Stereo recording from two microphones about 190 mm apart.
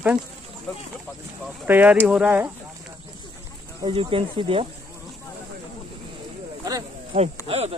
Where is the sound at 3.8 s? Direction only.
25° right (ahead or behind).